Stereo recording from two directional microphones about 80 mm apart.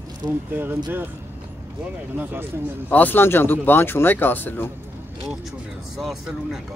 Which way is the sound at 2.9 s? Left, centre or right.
Left.